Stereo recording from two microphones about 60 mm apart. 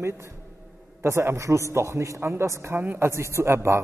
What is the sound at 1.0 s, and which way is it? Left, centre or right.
A man's voice, right.